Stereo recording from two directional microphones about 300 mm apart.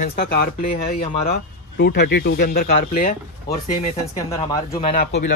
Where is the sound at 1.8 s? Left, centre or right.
Left.